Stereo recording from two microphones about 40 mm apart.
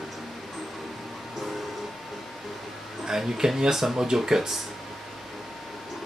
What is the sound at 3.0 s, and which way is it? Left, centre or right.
Speech, centre.